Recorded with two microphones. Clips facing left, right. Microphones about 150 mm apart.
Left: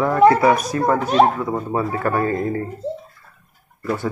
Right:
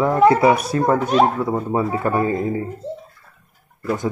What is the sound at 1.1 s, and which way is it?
Speech, 5° right (ahead or behind).